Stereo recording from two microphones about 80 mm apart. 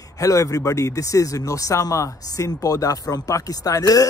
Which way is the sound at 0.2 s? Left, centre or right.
Left.